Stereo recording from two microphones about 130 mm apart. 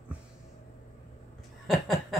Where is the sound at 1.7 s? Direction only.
Centre (ahead or behind).